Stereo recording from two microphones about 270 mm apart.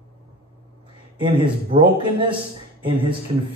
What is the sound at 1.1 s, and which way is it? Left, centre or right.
Speech, centre.